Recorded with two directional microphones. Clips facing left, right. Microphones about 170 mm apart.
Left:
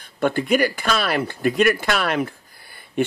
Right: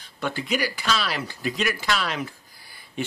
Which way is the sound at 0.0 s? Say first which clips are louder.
Left 8 dB; 55° left (ahead or behind).